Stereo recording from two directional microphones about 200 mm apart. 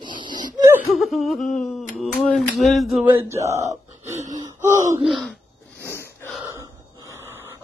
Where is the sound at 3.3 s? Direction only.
15° right (ahead or behind).